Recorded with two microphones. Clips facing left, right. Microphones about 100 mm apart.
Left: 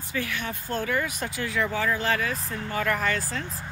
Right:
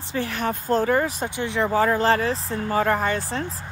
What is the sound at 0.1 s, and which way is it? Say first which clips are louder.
Speech: right 6 dB; 35° right (ahead or behind).